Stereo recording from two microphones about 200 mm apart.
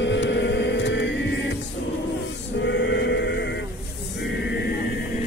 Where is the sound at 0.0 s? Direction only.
65° left (ahead or behind).